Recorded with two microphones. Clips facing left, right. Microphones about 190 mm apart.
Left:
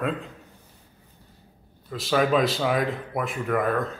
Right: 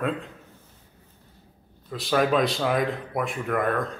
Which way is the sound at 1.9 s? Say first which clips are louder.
Even; centre (ahead or behind).